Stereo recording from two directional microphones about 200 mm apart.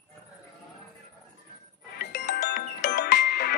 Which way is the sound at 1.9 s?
55° left (ahead or behind).